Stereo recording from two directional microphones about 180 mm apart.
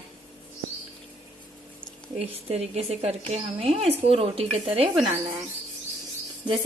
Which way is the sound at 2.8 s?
35° right (ahead or behind).